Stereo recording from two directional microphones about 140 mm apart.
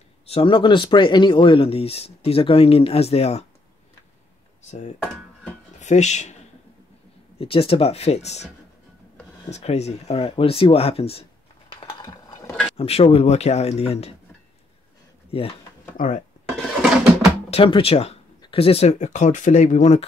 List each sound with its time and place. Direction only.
0.3 s speech: 40° left (ahead or behind)
4.6 s speech: 55° left (ahead or behind)
7.3 s speech: 40° left (ahead or behind)
9.5 s speech: 50° left (ahead or behind)
11.7 s dishes: 35° left (ahead or behind)
12.4 s a sound: 5° left (ahead or behind)
12.7 s speech: 45° left (ahead or behind)
15.3 s speech: 45° left (ahead or behind)
16.0 s speech: 75° left (ahead or behind)
17.5 s speech: 40° left (ahead or behind)